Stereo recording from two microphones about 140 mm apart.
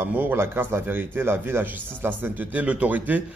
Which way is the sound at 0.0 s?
15° right (ahead or behind).